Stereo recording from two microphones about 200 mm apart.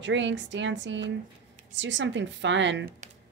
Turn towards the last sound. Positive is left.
turn(degrees=-40)  # may be behind; listen again after turning